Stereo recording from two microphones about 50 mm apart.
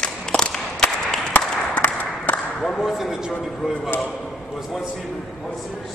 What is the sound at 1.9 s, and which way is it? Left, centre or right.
Applause, left.